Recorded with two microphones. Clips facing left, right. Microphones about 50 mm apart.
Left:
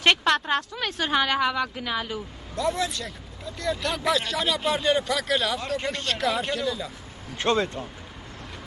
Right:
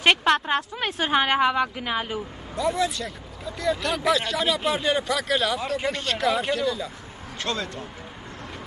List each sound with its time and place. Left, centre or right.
0.0 s a woman's voice: centre
2.5 s speech: centre
7.3 s speech: left